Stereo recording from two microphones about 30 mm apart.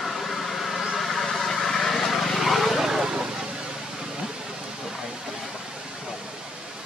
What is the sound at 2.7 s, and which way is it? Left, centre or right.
Vehicle, centre.